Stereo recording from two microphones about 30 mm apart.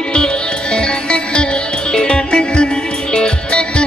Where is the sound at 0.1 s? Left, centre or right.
Left.